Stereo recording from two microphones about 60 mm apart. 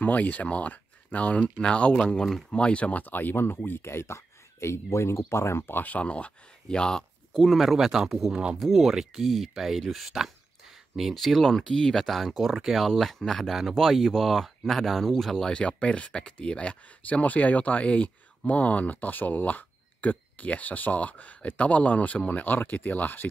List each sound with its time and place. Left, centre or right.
0.0 s speech: left
5.7 s speech: left; by 7.1 s centre
7.3 s speech: centre
15.5 s speech: centre